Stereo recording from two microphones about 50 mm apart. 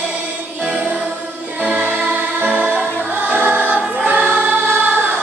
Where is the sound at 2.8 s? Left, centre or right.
Right.